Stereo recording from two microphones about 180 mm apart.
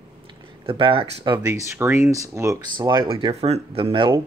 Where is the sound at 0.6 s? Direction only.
30° right (ahead or behind).